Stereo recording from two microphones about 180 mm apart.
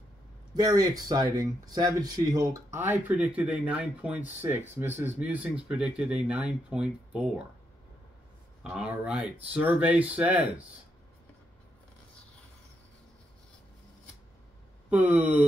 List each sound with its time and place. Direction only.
0.6 s speech: 20° right (ahead or behind)
8.6 s speech: 5° right (ahead or behind)
14.9 s speech: 10° right (ahead or behind)